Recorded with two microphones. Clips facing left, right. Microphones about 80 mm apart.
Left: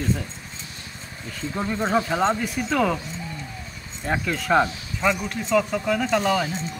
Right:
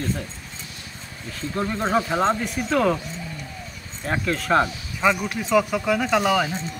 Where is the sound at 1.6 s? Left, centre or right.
Centre.